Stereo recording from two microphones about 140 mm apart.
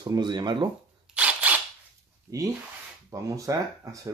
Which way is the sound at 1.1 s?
10° right (ahead or behind).